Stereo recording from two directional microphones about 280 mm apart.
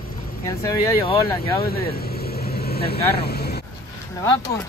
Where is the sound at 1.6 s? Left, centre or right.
Left.